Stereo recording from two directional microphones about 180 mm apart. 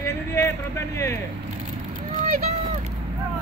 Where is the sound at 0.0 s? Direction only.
15° left (ahead or behind).